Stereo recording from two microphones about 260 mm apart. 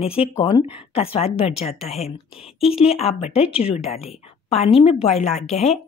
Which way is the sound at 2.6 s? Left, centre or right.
Left.